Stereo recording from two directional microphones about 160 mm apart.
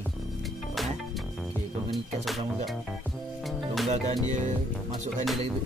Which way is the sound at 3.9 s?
50° right (ahead or behind).